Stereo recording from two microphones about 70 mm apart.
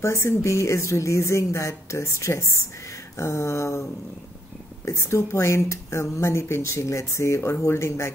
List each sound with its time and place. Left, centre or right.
0.0 s speech: left
4.8 s speech: left